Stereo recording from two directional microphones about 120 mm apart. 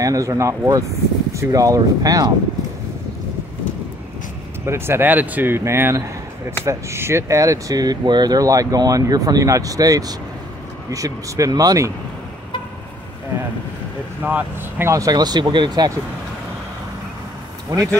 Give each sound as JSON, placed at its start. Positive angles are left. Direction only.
{"t": 0.0, "sound": "speech", "side_deg": -30}
{"t": 4.6, "sound": "speech", "side_deg": -20}
{"t": 14.2, "sound": "speech", "side_deg": -15}
{"t": 14.9, "sound": "speech", "side_deg": -30}
{"t": 17.7, "sound": "speech", "side_deg": -35}